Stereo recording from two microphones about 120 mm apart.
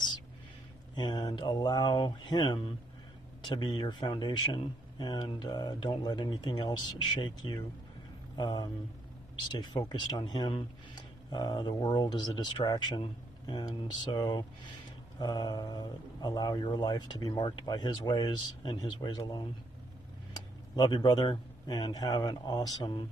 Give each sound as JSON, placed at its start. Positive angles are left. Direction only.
{"t": 0.9, "sound": "speech", "side_deg": 35}